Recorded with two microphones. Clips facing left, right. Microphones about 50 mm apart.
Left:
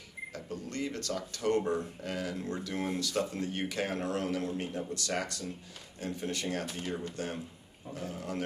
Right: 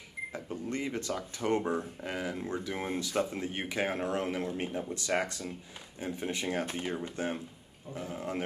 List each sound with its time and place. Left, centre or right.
0.3 s speech: right